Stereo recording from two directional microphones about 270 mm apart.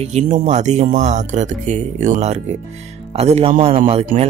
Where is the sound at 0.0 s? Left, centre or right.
Right.